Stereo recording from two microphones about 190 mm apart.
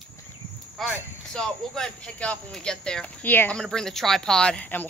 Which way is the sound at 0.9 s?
5° left (ahead or behind).